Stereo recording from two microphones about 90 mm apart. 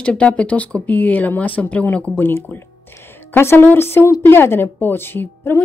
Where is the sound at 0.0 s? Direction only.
10° left (ahead or behind).